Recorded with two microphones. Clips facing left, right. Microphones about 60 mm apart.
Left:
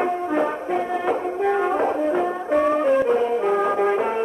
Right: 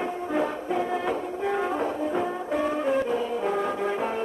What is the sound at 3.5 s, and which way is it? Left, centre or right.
Brass instrument, centre.